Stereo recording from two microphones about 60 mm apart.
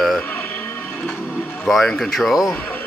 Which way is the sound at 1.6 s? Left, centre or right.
Centre.